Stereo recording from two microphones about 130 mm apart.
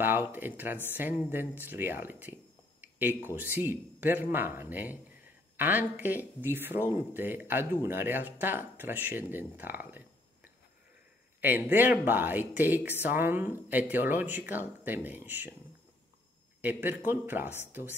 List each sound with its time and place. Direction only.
0.0 s speech: 15° right (ahead or behind)
16.6 s speech: 15° right (ahead or behind)